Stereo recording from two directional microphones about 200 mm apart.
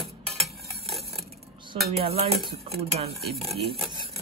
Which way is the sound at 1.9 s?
30° right (ahead or behind).